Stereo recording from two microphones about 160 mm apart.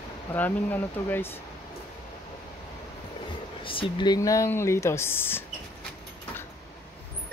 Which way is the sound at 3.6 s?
30° left (ahead or behind).